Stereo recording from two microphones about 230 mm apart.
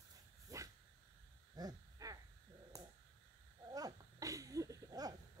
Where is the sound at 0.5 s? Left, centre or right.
Centre.